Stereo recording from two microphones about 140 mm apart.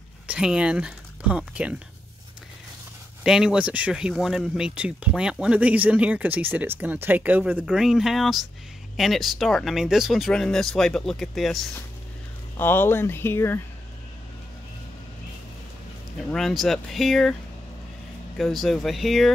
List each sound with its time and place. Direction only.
0.3 s speech: 5° right (ahead or behind)
3.3 s speech: 5° right (ahead or behind)
12.5 s speech: 15° left (ahead or behind)
16.3 s speech: centre (ahead or behind)
18.4 s speech: centre (ahead or behind)